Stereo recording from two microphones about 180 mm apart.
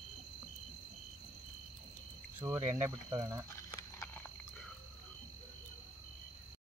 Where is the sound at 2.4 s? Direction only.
15° right (ahead or behind).